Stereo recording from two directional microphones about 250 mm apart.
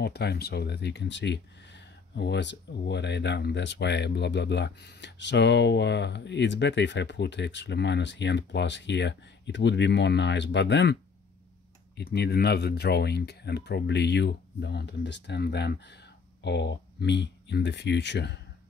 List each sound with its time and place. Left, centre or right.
0.0 s speech: left
12.0 s speech: left